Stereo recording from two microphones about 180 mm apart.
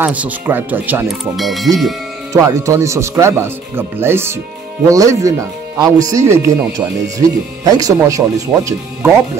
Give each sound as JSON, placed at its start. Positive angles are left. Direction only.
{"t": 0.0, "sound": "speech", "side_deg": -10}
{"t": 2.3, "sound": "speech", "side_deg": -20}